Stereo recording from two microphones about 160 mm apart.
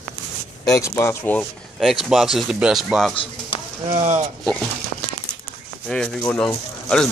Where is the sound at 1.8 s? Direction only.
Centre (ahead or behind).